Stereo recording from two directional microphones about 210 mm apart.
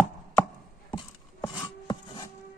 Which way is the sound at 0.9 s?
20° left (ahead or behind).